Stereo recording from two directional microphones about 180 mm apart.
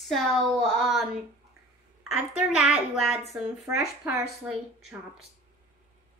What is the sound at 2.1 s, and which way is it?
A woman's voice, 5° right (ahead or behind).